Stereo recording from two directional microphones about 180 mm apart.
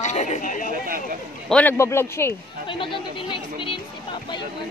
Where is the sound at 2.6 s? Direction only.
30° left (ahead or behind).